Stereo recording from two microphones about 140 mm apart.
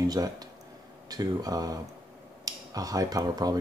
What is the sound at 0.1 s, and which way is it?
Speech, 25° right (ahead or behind).